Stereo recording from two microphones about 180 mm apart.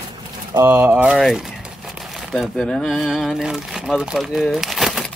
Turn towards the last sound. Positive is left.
turn(degrees=0)  # may be behind; listen again after turning